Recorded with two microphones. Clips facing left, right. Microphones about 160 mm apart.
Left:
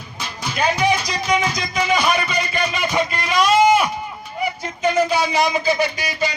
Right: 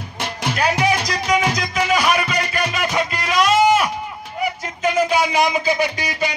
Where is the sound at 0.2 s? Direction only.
75° right (ahead or behind).